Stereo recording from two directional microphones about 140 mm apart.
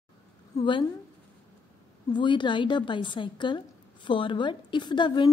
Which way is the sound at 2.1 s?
35° left (ahead or behind).